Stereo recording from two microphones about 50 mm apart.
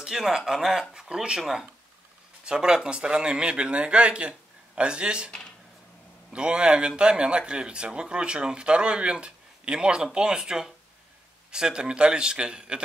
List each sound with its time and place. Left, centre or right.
0.0 s speech: centre
2.4 s speech: centre
6.3 s speech: centre